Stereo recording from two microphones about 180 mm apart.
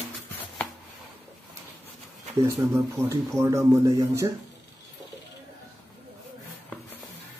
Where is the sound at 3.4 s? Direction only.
15° right (ahead or behind).